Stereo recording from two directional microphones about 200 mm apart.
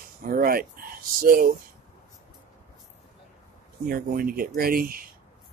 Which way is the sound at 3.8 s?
50° right (ahead or behind).